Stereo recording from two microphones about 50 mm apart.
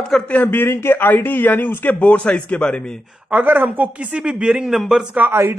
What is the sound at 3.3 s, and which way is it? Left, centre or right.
Speech, right.